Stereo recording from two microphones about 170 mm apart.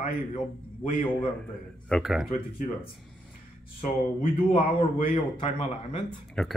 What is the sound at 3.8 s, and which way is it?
Speech, 35° left (ahead or behind).